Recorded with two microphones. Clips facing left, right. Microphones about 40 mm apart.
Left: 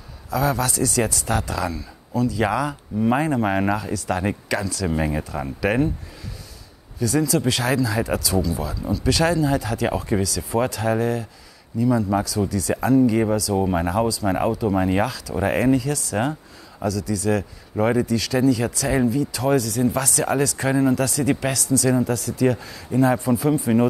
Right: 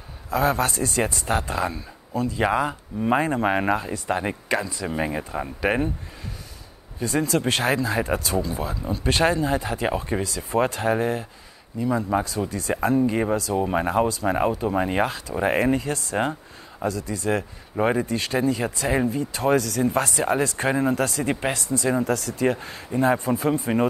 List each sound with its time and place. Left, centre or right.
0.3 s speech: right
7.0 s speech: right
14.2 s speech: centre
14.9 s speech: right
22.0 s speech: right